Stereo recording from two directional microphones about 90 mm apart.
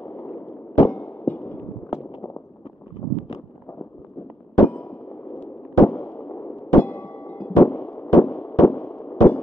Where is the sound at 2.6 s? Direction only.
90° left.